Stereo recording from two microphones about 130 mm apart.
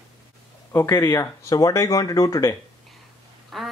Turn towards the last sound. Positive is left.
turn(degrees=0)  # may be behind; listen again after turning